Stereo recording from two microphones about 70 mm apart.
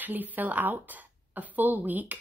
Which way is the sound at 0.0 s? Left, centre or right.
Right.